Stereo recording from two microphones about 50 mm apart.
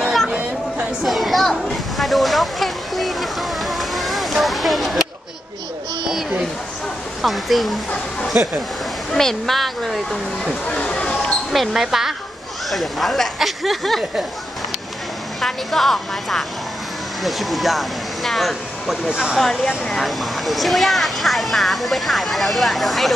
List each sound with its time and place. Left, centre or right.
0.3 s a sound: right
1.0 s a sound: centre
7.2 s speech: centre
9.1 s speech: centre
10.7 s a sound: left
11.7 s speech: centre
15.4 s speech: centre
19.0 s speech: centre
19.3 s speech: centre